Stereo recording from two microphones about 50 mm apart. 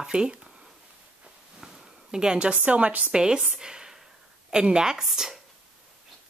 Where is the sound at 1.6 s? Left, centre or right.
Centre.